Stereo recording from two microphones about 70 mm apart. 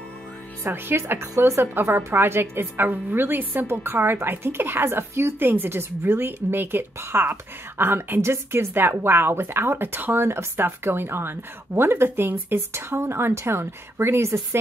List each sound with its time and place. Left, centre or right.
0.7 s a woman's voice: right